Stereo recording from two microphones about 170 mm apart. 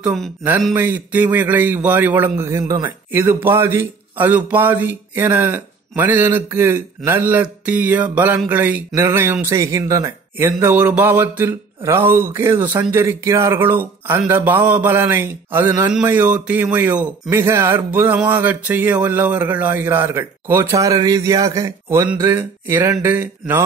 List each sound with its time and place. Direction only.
0.0 s speech: centre (ahead or behind)
0.4 s a man's voice: 15° right (ahead or behind)